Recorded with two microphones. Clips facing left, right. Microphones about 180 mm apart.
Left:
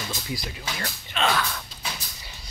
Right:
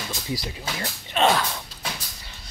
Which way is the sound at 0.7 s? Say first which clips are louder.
Right 6 dB; 25° right (ahead or behind).